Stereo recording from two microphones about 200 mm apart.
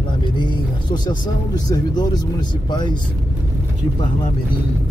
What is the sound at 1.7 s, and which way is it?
Speech, 20° left (ahead or behind).